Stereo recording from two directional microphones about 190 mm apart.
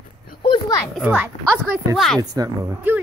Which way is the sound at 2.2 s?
20° right (ahead or behind).